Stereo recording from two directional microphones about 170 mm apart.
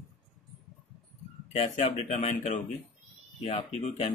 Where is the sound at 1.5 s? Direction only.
40° left (ahead or behind).